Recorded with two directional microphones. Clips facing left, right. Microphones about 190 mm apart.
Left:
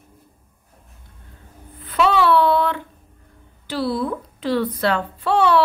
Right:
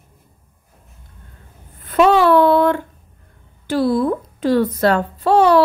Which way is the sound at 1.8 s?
45° right (ahead or behind).